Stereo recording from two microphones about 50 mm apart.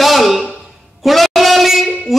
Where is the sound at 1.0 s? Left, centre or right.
Centre.